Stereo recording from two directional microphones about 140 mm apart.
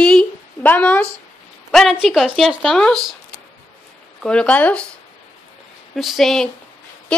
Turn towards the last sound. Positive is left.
turn(degrees=5)  # may be behind; listen again after turning